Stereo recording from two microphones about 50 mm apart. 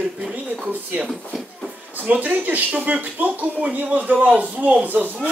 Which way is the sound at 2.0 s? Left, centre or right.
Right.